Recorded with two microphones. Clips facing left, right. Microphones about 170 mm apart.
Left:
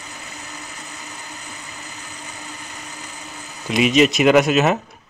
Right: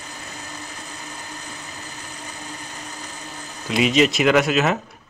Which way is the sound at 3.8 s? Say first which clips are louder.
Left 2 dB; 15° left (ahead or behind).